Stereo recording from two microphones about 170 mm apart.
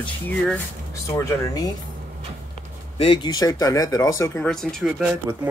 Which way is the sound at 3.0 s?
30° left (ahead or behind).